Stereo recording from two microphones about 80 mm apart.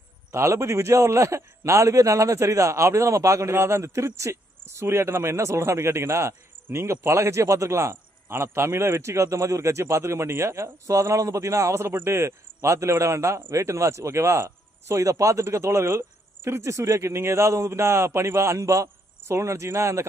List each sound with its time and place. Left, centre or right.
0.3 s a man's voice: right